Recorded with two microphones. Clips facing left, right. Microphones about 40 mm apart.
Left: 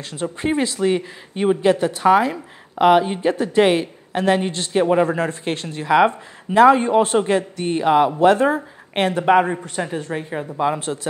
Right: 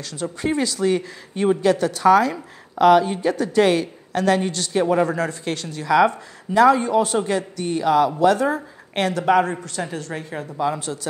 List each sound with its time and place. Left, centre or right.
0.0 s a woman's voice: left